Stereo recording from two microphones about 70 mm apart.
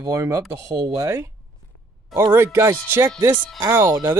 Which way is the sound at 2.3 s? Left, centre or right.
Right.